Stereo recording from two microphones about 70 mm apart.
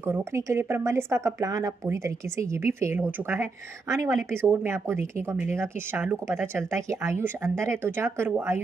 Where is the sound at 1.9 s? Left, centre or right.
Right.